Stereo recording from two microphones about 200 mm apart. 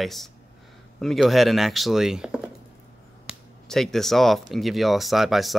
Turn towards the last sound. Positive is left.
turn(degrees=0)  # may be behind; listen again after turning